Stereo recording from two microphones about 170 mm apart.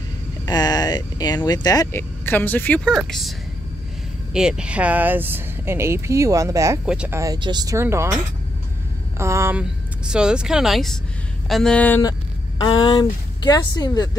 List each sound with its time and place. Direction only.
0.5 s speech: 25° left (ahead or behind); by 6.8 s 20° right (ahead or behind)
6.9 s speech: 5° right (ahead or behind)
7.2 s speech: 20° right (ahead or behind)
9.2 s speech: 15° right (ahead or behind)
9.6 s speech: 5° right (ahead or behind)
12.0 s speech: 25° left (ahead or behind)